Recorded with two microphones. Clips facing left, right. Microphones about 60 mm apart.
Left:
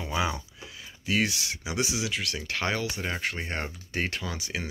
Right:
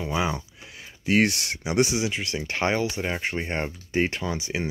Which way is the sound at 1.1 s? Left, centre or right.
Right.